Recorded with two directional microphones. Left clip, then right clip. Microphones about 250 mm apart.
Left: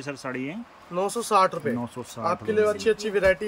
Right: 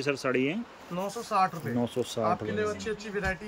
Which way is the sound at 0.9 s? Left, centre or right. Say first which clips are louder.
Left 6 dB; left.